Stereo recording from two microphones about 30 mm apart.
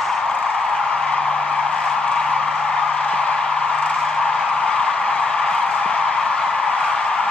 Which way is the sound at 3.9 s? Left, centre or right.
Centre.